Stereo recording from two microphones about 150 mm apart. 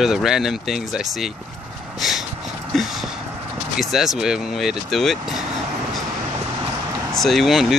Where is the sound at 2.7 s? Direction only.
Centre (ahead or behind).